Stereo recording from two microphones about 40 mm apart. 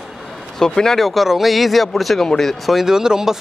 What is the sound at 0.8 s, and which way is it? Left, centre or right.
Speech, centre.